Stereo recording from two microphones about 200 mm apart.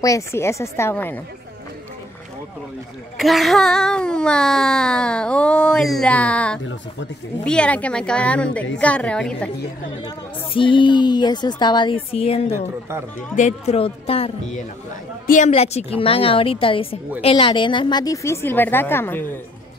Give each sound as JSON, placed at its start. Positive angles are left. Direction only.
{"t": 0.0, "sound": "speech", "side_deg": 15}
{"t": 3.2, "sound": "speech", "side_deg": 0}
{"t": 10.0, "sound": "a woman's voice", "side_deg": 25}